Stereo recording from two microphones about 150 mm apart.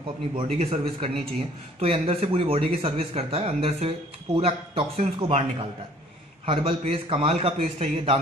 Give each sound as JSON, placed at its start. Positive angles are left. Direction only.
{"t": 0.4, "sound": "speech", "side_deg": -40}
{"t": 6.4, "sound": "speech", "side_deg": -40}